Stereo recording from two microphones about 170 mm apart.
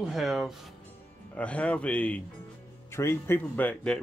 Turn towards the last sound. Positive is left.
turn(degrees=5)  # may be behind; listen again after turning